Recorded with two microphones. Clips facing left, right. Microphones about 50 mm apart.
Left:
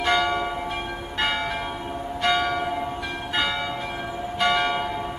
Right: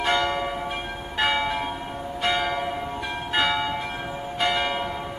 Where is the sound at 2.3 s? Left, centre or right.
Centre.